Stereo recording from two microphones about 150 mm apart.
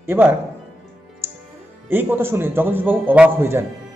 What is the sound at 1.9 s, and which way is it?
A man's voice, 15° right (ahead or behind).